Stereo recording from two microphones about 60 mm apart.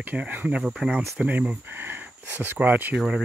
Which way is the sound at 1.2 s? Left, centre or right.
Right.